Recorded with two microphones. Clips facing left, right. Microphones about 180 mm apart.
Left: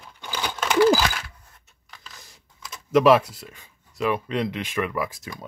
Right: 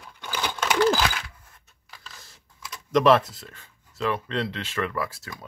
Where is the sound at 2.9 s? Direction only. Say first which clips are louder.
Left 2 dB; 10° left (ahead or behind).